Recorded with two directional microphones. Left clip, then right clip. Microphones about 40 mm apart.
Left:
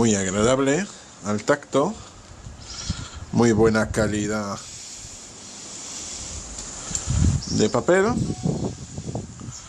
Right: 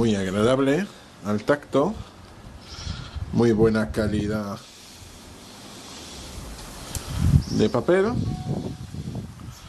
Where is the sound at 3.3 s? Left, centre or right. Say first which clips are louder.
Left 1 dB; left.